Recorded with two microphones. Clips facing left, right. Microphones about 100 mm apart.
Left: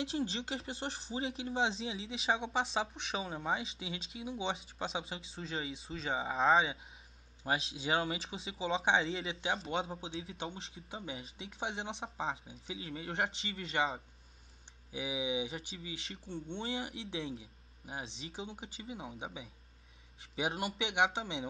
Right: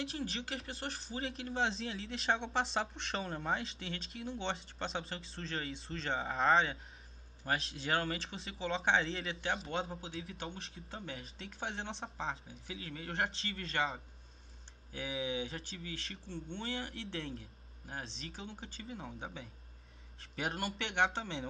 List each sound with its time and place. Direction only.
0.0 s speech: 25° left (ahead or behind)
1.4 s speech: 5° left (ahead or behind)
9.9 s speech: 20° left (ahead or behind); by 12.1 s 5° left (ahead or behind)
12.4 s speech: 20° left (ahead or behind)
13.1 s speech: 5° left (ahead or behind)
13.7 s speech: 15° left (ahead or behind)
16.3 s speech: 30° left (ahead or behind)
16.9 s speech: 5° left (ahead or behind)